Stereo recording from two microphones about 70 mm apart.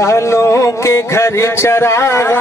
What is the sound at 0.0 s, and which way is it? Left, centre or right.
Speech, left.